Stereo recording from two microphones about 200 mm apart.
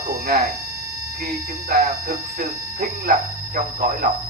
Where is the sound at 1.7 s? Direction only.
50° right (ahead or behind).